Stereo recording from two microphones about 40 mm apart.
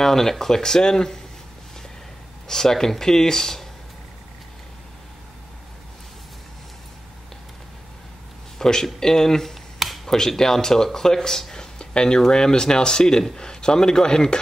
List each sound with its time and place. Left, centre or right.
0.0 s speech: centre
2.4 s speech: centre
8.5 s a sound: centre
10.0 s speech: centre